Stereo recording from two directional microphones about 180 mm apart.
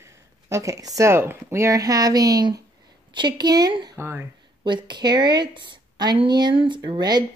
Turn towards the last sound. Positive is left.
turn(degrees=-25)  # may be behind; listen again after turning